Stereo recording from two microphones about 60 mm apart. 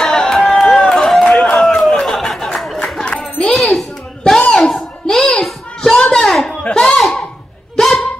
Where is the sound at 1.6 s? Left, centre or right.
Centre.